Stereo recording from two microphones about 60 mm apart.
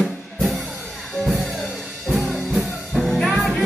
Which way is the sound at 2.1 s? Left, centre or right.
Centre.